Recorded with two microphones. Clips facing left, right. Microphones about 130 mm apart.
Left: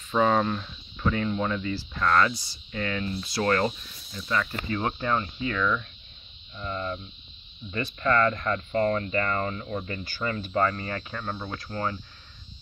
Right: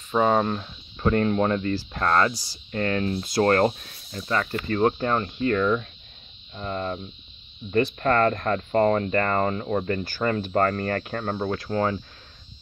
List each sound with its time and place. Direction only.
0.1 s speech: 25° right (ahead or behind)
1.1 s speech: 50° right (ahead or behind)
2.0 s speech: 35° right (ahead or behind)
2.7 s speech: 45° right (ahead or behind)
4.2 s speech: 40° right (ahead or behind); by 10.0 s 60° right (ahead or behind)
10.0 s speech: 40° right (ahead or behind)
10.3 s speech: 55° right (ahead or behind)
11.7 s speech: 60° right (ahead or behind)